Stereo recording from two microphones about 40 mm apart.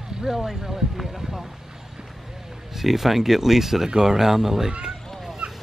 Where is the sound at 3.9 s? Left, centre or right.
Centre.